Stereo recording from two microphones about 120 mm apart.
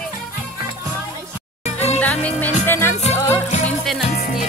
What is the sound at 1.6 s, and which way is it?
Music, 70° left (ahead or behind).